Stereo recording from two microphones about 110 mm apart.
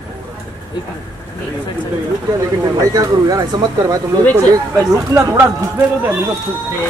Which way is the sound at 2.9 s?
35° right (ahead or behind).